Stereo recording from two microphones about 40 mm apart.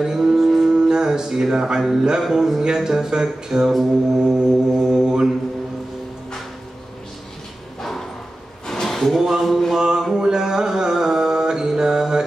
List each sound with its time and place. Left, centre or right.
0.0 s music: centre
0.7 s music: centre
1.5 s speech: centre
4.2 s music: right
4.7 s mantra: centre
7.8 s bow-wow: centre
8.6 s a sound: centre
9.2 s a sound: centre
9.8 s mantra: centre